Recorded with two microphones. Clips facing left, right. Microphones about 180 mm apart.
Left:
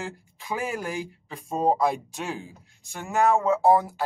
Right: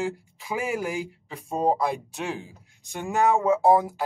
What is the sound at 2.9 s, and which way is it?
Speech, 15° right (ahead or behind).